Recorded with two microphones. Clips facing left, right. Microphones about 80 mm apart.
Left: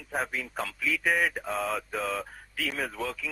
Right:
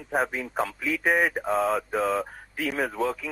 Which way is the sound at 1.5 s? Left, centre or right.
Centre.